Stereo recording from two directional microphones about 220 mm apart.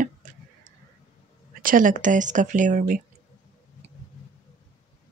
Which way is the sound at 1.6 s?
40° right (ahead or behind).